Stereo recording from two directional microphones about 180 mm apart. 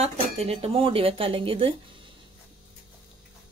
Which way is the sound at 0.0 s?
35° right (ahead or behind).